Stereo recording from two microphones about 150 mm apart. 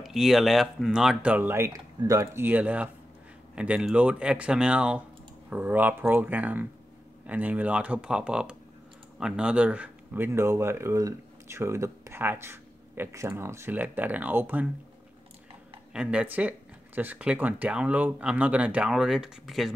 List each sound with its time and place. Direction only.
0.0 s speech: centre (ahead or behind)
15.9 s speech: 5° right (ahead or behind)